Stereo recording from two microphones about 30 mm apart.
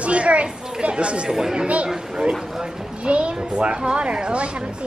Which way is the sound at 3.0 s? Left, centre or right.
Right.